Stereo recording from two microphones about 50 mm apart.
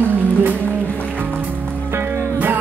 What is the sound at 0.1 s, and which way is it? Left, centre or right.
Music, right.